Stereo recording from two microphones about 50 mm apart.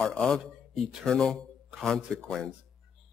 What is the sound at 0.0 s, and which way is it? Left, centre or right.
A man's voice, centre.